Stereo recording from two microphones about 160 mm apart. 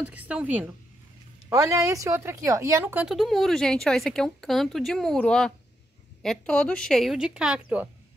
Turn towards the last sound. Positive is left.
turn(degrees=-5)  # may be behind; listen again after turning